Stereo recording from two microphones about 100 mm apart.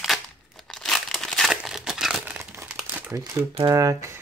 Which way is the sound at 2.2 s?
15° right (ahead or behind).